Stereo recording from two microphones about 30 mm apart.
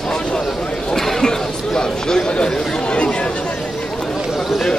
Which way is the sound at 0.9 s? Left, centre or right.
Centre.